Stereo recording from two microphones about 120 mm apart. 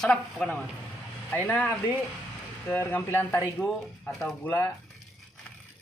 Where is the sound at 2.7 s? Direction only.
20° left (ahead or behind).